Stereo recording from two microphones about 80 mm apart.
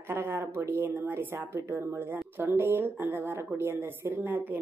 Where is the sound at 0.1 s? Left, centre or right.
Right.